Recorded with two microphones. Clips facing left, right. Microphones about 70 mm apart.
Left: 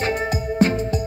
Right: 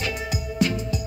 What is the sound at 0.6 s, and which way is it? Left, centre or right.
Music, left.